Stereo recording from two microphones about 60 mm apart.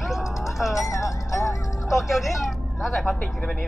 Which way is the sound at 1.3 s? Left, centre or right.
Left.